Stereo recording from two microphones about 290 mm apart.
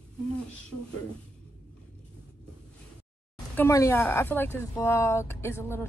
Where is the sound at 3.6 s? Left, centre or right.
Centre.